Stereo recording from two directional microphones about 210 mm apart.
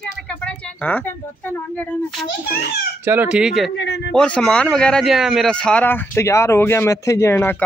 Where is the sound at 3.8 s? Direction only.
55° left (ahead or behind).